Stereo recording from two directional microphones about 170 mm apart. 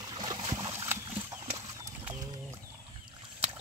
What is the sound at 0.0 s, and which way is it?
Boat, 25° right (ahead or behind).